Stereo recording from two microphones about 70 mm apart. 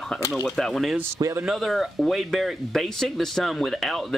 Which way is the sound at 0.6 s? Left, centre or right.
Centre.